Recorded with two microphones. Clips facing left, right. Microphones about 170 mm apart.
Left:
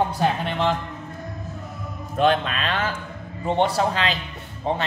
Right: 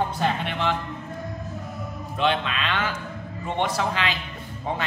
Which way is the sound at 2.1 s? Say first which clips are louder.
Left 4 dB; 45° left (ahead or behind).